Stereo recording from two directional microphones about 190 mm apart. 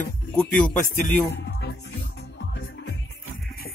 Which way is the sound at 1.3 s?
65° left (ahead or behind).